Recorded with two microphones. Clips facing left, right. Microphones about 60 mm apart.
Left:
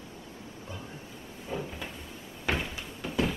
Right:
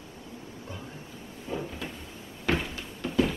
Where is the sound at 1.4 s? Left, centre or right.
Centre.